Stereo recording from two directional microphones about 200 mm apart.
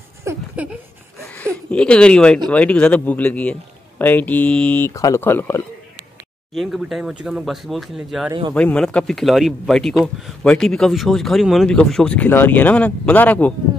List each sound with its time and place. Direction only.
0.2 s a sound: 15° right (ahead or behind)
1.2 s speech: 5° left (ahead or behind)
6.5 s speech: centre (ahead or behind)
8.3 s speech: 20° right (ahead or behind)
8.5 s speech: 5° left (ahead or behind)